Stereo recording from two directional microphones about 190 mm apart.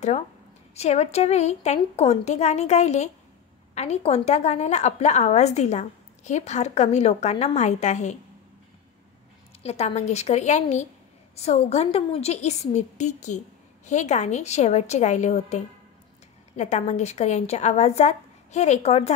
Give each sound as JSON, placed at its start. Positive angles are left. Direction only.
{"t": 0.7, "sound": "a woman's voice", "side_deg": 35}
{"t": 9.6, "sound": "a woman's voice", "side_deg": 35}